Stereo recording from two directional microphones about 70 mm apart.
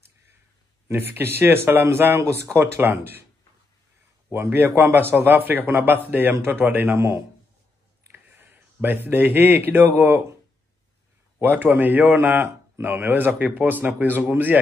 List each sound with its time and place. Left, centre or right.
0.8 s speech: right
4.3 s speech: right
8.1 s a sound: right
9.7 s speech: right
11.4 s speech: right